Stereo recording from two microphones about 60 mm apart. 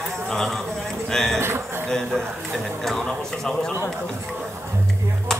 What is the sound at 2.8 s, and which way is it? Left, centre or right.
Speech, centre.